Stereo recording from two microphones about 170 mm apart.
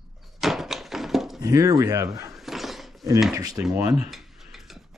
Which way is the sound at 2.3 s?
Centre (ahead or behind).